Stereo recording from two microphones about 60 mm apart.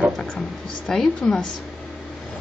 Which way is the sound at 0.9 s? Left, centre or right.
Centre.